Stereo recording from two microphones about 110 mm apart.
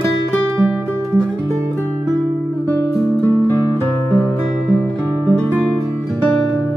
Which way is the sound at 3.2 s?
20° left (ahead or behind).